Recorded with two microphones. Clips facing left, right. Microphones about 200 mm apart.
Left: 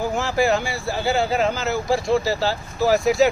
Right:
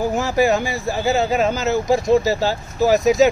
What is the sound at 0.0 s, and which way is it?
Speech, 15° right (ahead or behind).